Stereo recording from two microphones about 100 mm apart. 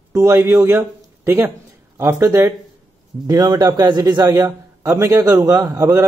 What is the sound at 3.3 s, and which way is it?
A man's voice, 40° right (ahead or behind).